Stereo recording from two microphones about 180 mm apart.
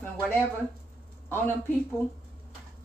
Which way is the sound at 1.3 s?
10° left (ahead or behind).